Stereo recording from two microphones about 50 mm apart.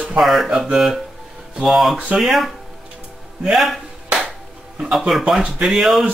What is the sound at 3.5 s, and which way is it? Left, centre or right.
Speech, centre.